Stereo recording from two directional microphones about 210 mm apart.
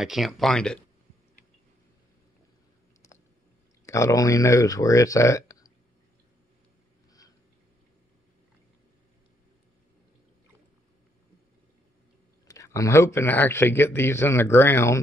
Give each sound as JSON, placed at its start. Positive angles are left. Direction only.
{"t": 0.0, "sound": "speech", "side_deg": 0}
{"t": 3.8, "sound": "speech", "side_deg": 15}
{"t": 12.4, "sound": "a man's voice", "side_deg": 15}